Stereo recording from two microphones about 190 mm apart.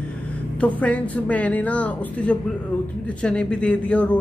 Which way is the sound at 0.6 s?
5° left (ahead or behind).